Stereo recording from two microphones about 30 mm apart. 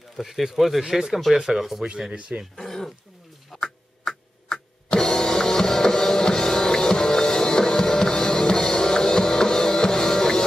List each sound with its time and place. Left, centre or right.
0.2 s speech: centre
0.8 s speech: centre
2.5 s a sound: centre
6.9 s music: centre